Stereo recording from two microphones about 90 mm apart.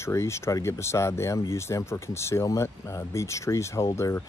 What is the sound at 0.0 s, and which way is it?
Speech, 30° left (ahead or behind).